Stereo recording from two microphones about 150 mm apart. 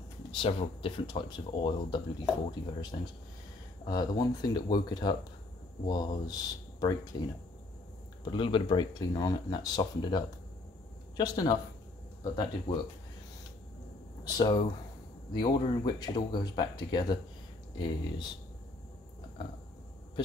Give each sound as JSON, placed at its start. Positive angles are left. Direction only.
{"t": 0.3, "sound": "speech", "side_deg": 35}
{"t": 3.8, "sound": "speech", "side_deg": 30}
{"t": 14.2, "sound": "speech", "side_deg": 25}